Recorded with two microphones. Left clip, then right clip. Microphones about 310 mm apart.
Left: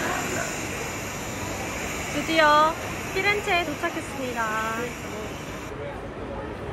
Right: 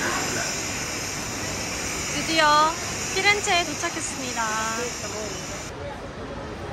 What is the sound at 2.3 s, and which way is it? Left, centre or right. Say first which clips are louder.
Speech: even; centre.